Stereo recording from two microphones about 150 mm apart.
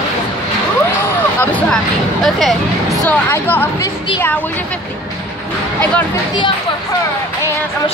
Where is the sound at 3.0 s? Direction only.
10° left (ahead or behind).